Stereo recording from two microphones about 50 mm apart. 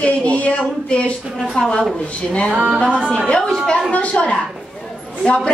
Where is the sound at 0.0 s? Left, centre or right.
Left.